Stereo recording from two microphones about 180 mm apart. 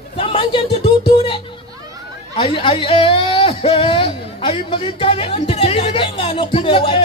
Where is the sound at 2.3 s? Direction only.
30° left (ahead or behind).